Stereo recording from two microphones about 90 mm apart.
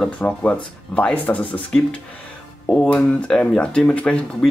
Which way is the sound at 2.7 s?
15° left (ahead or behind).